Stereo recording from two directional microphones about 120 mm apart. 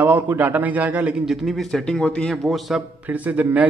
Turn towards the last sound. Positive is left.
turn(degrees=-10)  # may be behind; listen again after turning